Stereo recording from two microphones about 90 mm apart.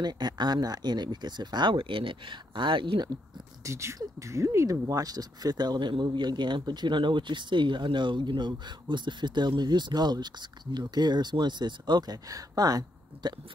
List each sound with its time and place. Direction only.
0.0 s speech: 55° right (ahead or behind)
3.6 s speech: 35° right (ahead or behind)